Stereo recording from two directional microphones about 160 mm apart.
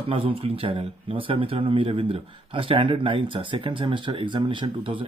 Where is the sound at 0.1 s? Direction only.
35° right (ahead or behind).